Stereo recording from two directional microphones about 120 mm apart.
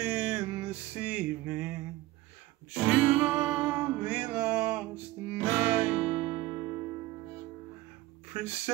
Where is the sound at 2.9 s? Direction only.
15° right (ahead or behind).